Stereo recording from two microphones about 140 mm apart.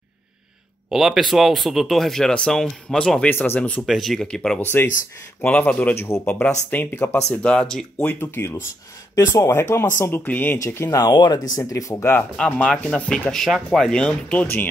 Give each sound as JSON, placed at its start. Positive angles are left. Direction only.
{"t": 0.8, "sound": "speech", "side_deg": -5}
{"t": 3.8, "sound": "speech", "side_deg": 0}